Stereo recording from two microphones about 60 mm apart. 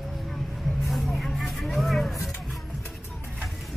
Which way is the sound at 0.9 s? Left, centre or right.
Centre.